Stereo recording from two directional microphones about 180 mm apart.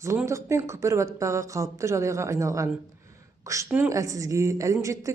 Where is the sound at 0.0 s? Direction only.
15° right (ahead or behind).